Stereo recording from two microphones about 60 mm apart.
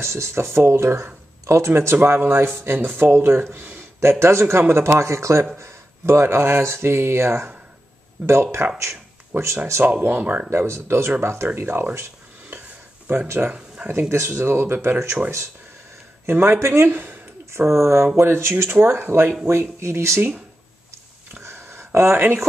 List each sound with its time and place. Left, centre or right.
0.0 s speech: right
2.0 s speech: right
8.7 s a sound: right
10.0 s speech: right
10.5 s speech: right
13.4 s speech: right
13.8 s speech: right
16.3 s speech: right
17.5 s speech: right
20.2 s speech: right
21.4 s a sound: right